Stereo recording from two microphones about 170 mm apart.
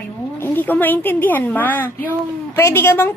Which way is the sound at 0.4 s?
10° left (ahead or behind).